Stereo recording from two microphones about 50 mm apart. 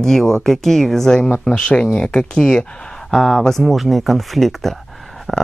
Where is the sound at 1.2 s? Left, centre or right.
Left.